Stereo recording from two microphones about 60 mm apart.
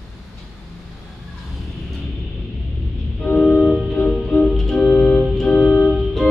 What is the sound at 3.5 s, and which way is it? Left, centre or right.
Organ, centre.